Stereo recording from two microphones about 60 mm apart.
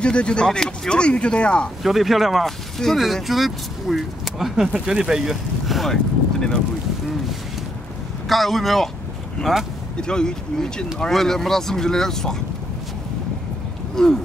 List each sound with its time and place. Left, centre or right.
0.0 s speech: centre
1.8 s speech: centre
8.3 s speech: centre
13.9 s speech: centre